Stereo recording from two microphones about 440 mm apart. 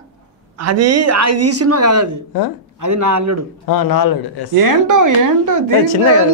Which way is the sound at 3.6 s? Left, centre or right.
Left.